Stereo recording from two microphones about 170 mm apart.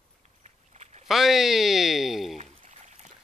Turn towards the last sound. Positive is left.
turn(degrees=-45)  # may be behind; listen again after turning